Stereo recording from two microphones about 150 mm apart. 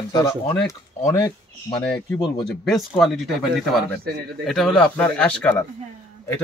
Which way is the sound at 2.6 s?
Centre (ahead or behind).